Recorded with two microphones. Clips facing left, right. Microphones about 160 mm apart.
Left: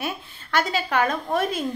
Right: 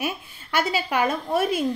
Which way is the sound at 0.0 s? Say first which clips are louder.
Right 1 dB; 10° right (ahead or behind).